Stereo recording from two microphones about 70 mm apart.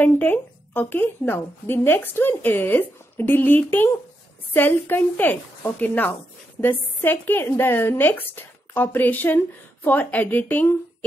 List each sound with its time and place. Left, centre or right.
0.0 s a woman's voice: left